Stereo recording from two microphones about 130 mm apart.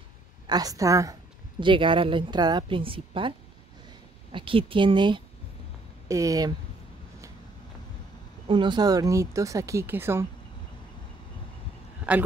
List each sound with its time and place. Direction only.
0.5 s speech: 30° right (ahead or behind)
1.6 s a woman's voice: 40° right (ahead or behind)
6.0 s speech: 25° right (ahead or behind)
8.5 s speech: 35° right (ahead or behind); by 10.2 s 20° right (ahead or behind)
12.1 s a man's voice: 10° right (ahead or behind)